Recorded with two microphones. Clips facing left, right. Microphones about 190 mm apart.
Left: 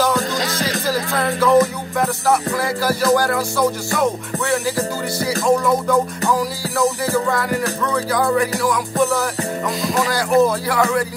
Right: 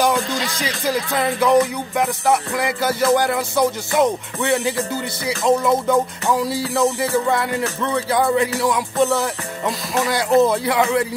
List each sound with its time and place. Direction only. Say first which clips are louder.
0.3 s music: left 2 dB; 45° left (ahead or behind)
1.1 s music: left 1 dB; 15° right (ahead or behind)